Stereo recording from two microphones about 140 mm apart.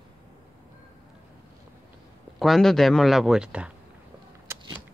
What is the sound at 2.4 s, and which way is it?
A man's voice, centre (ahead or behind).